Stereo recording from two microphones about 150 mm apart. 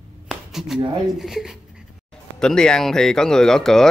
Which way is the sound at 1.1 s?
5° right (ahead or behind).